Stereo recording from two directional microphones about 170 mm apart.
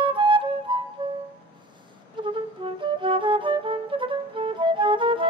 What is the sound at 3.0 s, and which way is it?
Flute, 30° right (ahead or behind).